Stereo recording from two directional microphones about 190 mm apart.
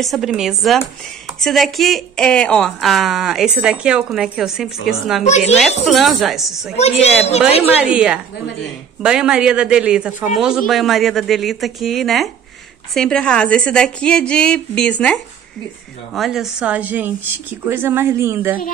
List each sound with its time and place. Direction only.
0.0 s speech: centre (ahead or behind)
5.2 s speech: 35° left (ahead or behind)
5.9 s speech: centre (ahead or behind)
7.7 s speech: 5° right (ahead or behind)
16.2 s a woman's voice: centre (ahead or behind)